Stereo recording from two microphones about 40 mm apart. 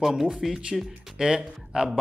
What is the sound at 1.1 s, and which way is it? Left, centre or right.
Speech, centre.